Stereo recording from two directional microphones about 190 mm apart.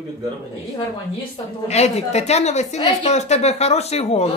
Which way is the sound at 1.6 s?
35° left (ahead or behind).